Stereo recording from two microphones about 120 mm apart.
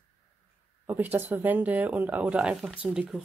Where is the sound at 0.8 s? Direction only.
15° right (ahead or behind).